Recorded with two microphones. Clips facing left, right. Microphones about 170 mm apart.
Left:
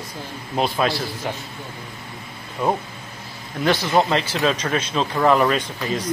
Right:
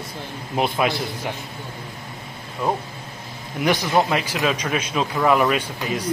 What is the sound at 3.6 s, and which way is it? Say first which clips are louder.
Speech: left 1 dB; 15° right (ahead or behind).